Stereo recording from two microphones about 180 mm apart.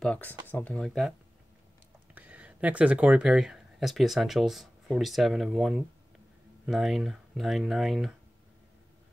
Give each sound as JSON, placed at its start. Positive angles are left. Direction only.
{"t": 0.0, "sound": "speech", "side_deg": 5}
{"t": 2.1, "sound": "speech", "side_deg": -5}